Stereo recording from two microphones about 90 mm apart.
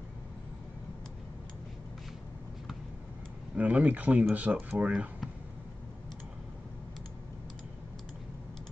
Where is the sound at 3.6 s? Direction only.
15° right (ahead or behind).